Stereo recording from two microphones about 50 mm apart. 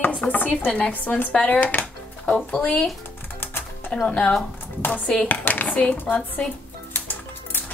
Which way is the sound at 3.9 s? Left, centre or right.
Centre.